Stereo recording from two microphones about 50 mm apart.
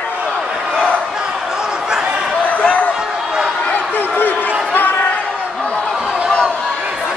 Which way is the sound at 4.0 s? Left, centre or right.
Left.